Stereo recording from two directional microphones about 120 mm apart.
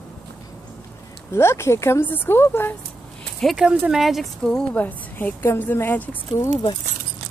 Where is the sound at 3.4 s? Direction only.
5° right (ahead or behind); by 6.1 s 15° left (ahead or behind).